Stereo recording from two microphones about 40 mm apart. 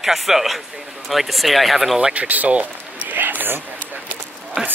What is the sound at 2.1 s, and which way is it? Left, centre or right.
Speech, right.